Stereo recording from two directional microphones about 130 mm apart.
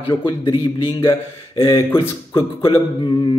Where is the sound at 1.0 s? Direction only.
20° left (ahead or behind).